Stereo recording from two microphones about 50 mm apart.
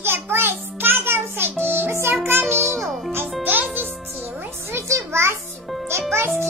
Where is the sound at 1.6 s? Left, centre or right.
Right.